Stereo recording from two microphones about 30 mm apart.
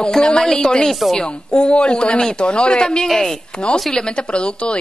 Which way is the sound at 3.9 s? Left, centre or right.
Left.